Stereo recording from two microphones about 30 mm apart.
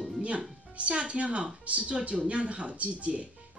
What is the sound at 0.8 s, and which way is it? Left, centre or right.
Speech, right.